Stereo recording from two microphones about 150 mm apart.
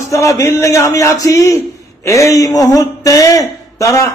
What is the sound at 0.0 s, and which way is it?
A man's voice, 20° left (ahead or behind).